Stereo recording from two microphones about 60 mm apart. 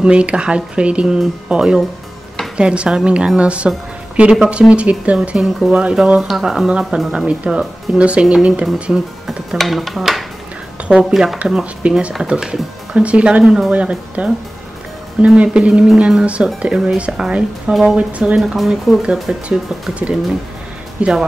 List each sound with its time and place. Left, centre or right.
0.0 s speech: centre
7.2 s speech: centre
9.5 s speech: centre
10.9 s speech: centre
13.4 s speech: centre
13.7 s speech: centre
18.4 s speech: centre
19.9 s speech: centre